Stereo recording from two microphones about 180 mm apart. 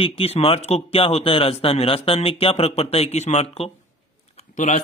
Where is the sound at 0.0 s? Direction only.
35° left (ahead or behind).